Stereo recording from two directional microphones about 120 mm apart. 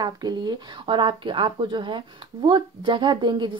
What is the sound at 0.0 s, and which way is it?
Speech, 35° right (ahead or behind).